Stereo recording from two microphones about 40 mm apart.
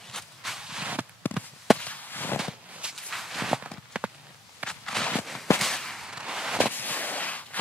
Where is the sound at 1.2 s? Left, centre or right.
Left.